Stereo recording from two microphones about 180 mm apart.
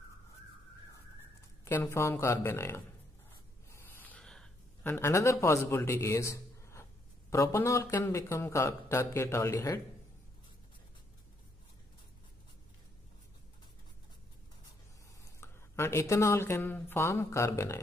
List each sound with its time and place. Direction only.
1.6 s speech: 15° left (ahead or behind)
15.4 s speech: 15° left (ahead or behind)